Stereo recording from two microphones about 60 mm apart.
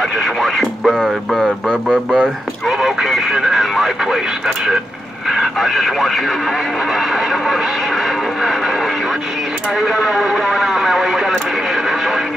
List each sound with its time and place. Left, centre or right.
0.2 s radio: centre
1.7 s a sound: centre
2.8 s radio: centre
5.3 s speech: centre
7.0 s a sound: centre
9.8 s speech: centre